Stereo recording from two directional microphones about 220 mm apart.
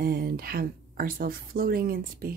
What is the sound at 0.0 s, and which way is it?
A woman's voice, 45° right (ahead or behind).